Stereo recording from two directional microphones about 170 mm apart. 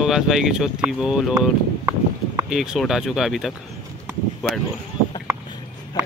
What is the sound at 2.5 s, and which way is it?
Speech, centre (ahead or behind).